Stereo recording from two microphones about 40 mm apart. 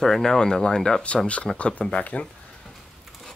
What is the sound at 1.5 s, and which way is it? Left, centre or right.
Speech, left.